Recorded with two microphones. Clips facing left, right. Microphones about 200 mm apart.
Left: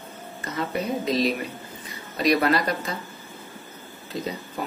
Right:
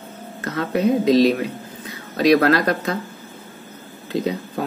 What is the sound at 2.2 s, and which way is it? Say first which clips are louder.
Speech: right 6 dB; 90° right.